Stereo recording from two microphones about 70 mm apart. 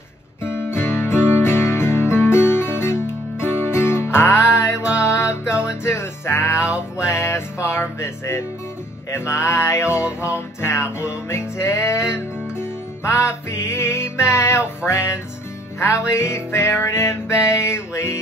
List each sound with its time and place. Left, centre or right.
0.4 s music: left
16.1 s music: left